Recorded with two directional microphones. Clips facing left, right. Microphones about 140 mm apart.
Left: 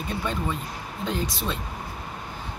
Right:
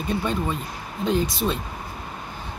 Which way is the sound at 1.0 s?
20° right (ahead or behind).